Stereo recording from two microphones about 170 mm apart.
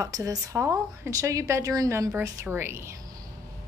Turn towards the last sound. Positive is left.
turn(degrees=-15)  # may be behind; listen again after turning